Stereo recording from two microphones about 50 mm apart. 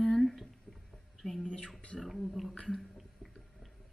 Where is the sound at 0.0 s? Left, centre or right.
Centre.